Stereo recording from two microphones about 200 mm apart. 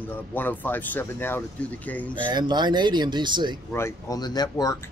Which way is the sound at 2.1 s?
20° right (ahead or behind).